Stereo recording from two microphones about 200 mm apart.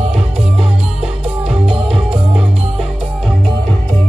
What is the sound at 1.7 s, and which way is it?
Music, 30° right (ahead or behind).